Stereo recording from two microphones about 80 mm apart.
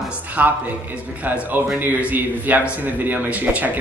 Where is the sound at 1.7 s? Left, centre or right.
Right.